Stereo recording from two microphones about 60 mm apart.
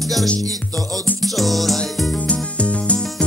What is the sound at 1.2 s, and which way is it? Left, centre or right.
Music, centre.